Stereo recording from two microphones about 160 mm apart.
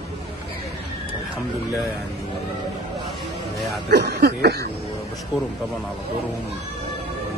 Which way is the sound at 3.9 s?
90° right.